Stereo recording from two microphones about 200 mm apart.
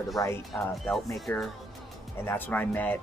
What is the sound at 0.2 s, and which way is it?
Speech, 15° left (ahead or behind).